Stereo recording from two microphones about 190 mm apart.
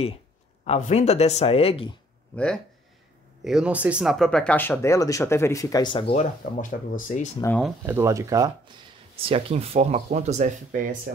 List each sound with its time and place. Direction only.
0.7 s speech: 35° left (ahead or behind)
2.3 s speech: 5° left (ahead or behind); by 6.0 s 25° left (ahead or behind)
6.1 s speech: 35° left (ahead or behind)
7.3 s speech: 10° left (ahead or behind)
7.8 s speech: 15° right (ahead or behind)
9.1 s speech: 30° right (ahead or behind)